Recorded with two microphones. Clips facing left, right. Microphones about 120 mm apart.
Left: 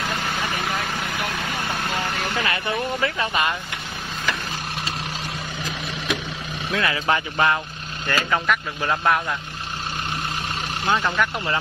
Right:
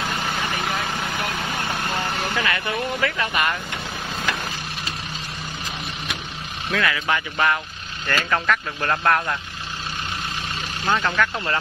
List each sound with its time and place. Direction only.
0.4 s vehicle: centre (ahead or behind)
2.3 s speech: 25° left (ahead or behind)
6.7 s speech: 30° left (ahead or behind)
8.1 s speech: 10° left (ahead or behind)
11.2 s speech: 15° left (ahead or behind)